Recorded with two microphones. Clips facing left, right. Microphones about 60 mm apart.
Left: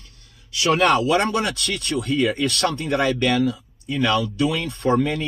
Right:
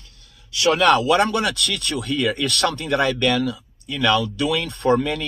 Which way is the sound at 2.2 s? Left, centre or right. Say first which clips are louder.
Left 1 dB; right.